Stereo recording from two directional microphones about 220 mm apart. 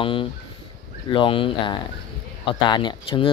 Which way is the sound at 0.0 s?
25° left (ahead or behind).